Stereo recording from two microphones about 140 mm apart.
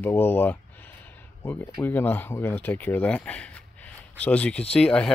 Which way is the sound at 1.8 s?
15° left (ahead or behind).